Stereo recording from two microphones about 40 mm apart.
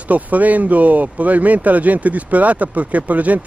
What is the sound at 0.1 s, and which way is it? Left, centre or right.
A man's voice, right.